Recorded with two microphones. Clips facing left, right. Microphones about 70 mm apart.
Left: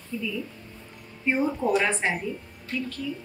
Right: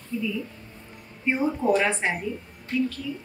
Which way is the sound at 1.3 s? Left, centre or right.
Centre.